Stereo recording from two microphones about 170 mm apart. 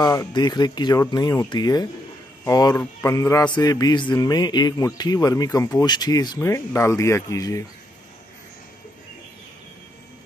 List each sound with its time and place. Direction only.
0.0 s music: 25° left (ahead or behind)